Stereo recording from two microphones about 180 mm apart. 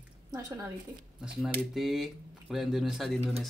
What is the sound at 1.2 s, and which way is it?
Speech, centre (ahead or behind).